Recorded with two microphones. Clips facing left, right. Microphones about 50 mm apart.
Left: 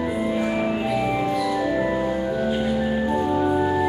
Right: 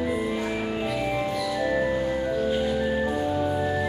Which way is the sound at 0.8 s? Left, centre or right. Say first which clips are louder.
Left 4 dB; centre.